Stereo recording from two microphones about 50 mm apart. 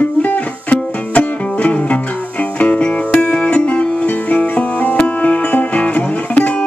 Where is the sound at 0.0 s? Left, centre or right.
Left.